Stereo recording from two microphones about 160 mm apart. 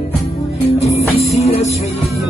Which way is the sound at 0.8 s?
40° left (ahead or behind).